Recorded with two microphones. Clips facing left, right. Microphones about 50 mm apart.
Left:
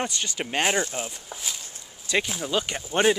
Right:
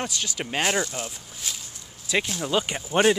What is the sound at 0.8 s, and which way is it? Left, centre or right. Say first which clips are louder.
Speech: even; centre.